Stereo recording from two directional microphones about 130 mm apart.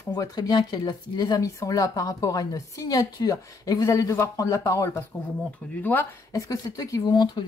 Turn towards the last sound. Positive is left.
turn(degrees=35)  # may be behind; listen again after turning